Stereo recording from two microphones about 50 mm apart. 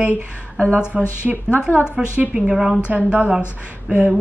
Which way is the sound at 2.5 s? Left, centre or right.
Centre.